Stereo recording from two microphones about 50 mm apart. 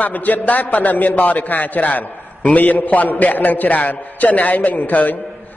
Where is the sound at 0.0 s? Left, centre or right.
Left.